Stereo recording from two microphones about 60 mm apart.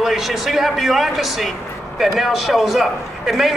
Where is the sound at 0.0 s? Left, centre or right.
Centre.